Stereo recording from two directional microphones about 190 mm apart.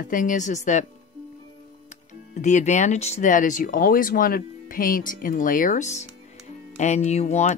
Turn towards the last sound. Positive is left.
turn(degrees=35)  # may be behind; listen again after turning